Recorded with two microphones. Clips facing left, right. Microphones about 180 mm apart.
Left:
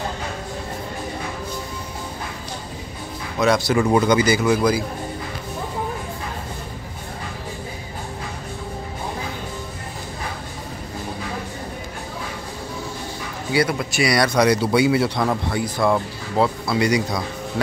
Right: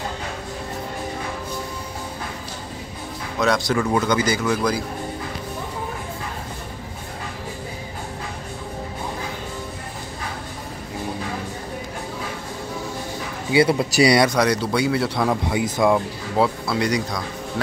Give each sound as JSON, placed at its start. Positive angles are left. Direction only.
{"t": 3.3, "sound": "speech", "side_deg": 5}
{"t": 3.8, "sound": "speech", "side_deg": 15}
{"t": 13.5, "sound": "speech", "side_deg": -30}
{"t": 14.3, "sound": "speech", "side_deg": 5}
{"t": 15.5, "sound": "speech", "side_deg": -20}
{"t": 15.9, "sound": "speech", "side_deg": -5}